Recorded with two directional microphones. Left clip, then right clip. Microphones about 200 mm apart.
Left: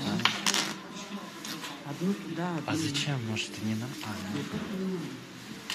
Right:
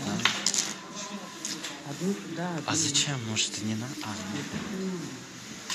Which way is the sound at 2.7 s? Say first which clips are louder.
Right 6 dB; 15° left (ahead or behind).